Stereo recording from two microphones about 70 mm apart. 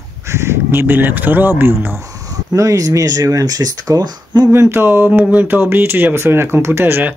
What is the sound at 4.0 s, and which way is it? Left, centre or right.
Speech, right.